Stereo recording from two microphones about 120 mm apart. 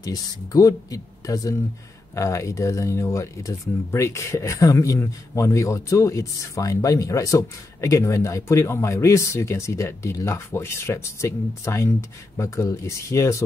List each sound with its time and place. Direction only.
0.0 s speech: 30° left (ahead or behind)